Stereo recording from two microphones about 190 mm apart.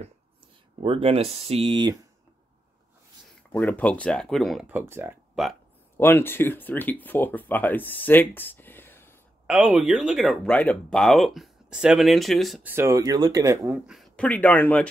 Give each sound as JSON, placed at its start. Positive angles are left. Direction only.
{"t": 0.8, "sound": "speech", "side_deg": -30}
{"t": 3.5, "sound": "speech", "side_deg": 10}
{"t": 5.9, "sound": "speech", "side_deg": 10}
{"t": 9.5, "sound": "speech", "side_deg": -5}
{"t": 12.7, "sound": "speech", "side_deg": -15}